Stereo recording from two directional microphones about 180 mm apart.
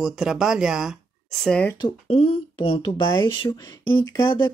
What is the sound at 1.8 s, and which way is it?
Speech, 35° left (ahead or behind).